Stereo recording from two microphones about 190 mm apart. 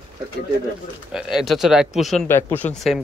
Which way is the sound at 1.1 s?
5° right (ahead or behind).